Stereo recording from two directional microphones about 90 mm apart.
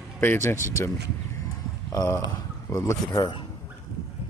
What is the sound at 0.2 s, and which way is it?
Speech, 25° left (ahead or behind).